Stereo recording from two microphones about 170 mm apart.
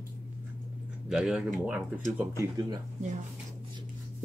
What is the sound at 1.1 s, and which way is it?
Speech, 5° right (ahead or behind).